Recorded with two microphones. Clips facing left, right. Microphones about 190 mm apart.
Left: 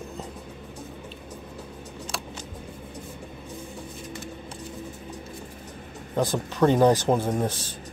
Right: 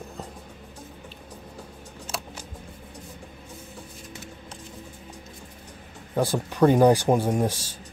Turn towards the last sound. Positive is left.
turn(degrees=-10)  # may be behind; listen again after turning